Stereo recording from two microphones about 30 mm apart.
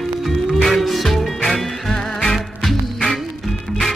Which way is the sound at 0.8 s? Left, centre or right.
Centre.